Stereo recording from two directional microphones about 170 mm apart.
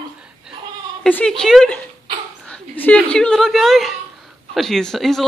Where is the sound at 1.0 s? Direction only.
5° left (ahead or behind).